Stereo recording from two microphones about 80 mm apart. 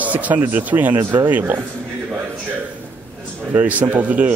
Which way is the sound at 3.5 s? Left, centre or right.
Right.